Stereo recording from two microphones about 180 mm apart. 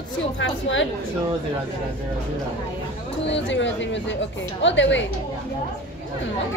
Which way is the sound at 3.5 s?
85° left.